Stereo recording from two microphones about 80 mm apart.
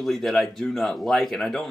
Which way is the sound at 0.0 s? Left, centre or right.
Centre.